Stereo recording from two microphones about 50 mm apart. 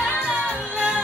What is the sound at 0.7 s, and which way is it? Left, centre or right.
Music, centre.